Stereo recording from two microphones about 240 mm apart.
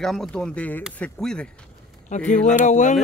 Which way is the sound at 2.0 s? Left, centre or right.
Left.